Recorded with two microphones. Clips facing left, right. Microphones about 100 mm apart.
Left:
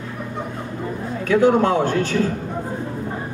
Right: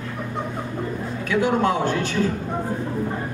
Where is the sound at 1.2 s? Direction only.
40° left (ahead or behind).